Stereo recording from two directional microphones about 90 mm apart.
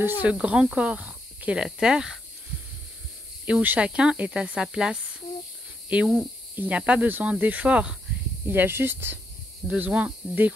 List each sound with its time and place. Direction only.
0.0 s speech: 20° right (ahead or behind)
3.4 s speech: 15° right (ahead or behind)
8.5 s speech: 25° right (ahead or behind)